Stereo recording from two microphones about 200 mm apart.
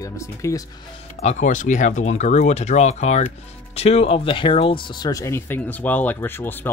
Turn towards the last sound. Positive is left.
turn(degrees=10)  # may be behind; listen again after turning